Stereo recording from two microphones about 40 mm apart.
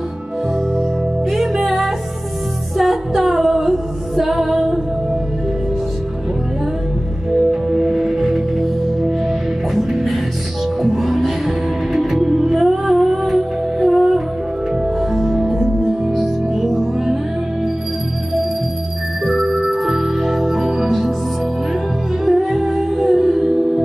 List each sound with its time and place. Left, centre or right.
1.3 s music: centre
2.8 s a capella: centre
7.7 s music: centre
9.8 s music: centre
19.2 s music: centre
22.2 s music: centre